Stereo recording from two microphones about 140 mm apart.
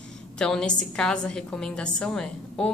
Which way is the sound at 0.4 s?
5° left (ahead or behind).